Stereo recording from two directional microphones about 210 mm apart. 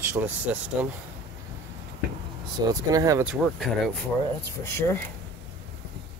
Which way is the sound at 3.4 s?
5° left (ahead or behind).